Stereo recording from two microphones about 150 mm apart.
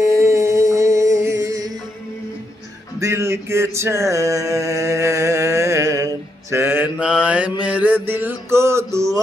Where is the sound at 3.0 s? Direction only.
20° right (ahead or behind).